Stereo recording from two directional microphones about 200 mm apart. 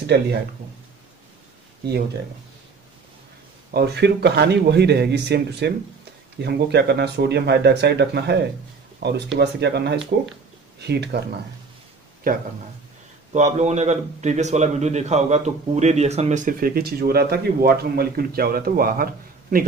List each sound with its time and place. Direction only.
0.0 s speech: 55° right (ahead or behind)
3.7 s speech: 55° right (ahead or behind)
12.2 s a man's voice: 45° right (ahead or behind)